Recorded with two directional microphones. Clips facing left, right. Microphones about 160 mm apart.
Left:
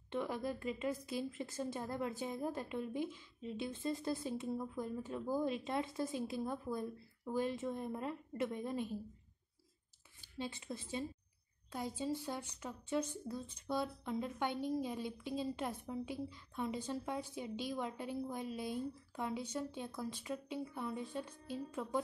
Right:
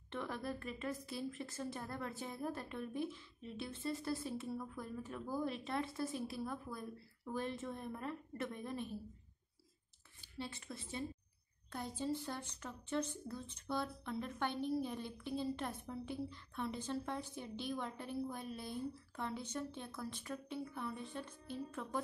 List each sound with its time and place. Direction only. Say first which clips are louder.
0.1 s speech: left 4 dB; 15° left (ahead or behind)
10.3 s speech: left 3 dB; 20° left (ahead or behind)